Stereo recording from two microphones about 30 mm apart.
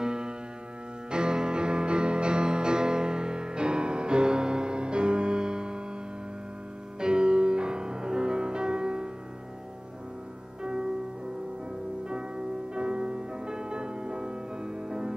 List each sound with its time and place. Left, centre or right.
0.0 s music: right
7.0 s music: right
10.6 s music: right
12.1 s music: right